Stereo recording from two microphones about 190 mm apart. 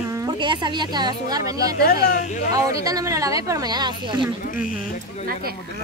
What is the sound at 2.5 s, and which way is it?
Speech, 20° right (ahead or behind).